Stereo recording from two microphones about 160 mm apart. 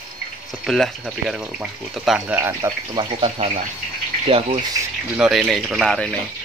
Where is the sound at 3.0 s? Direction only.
30° right (ahead or behind).